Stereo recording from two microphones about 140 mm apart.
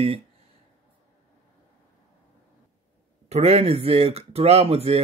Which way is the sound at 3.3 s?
50° right (ahead or behind).